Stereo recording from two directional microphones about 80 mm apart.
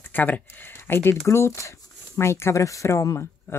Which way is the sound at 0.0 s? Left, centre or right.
Left.